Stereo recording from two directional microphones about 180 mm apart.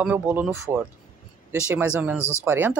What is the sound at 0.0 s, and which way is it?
Speech, 10° right (ahead or behind).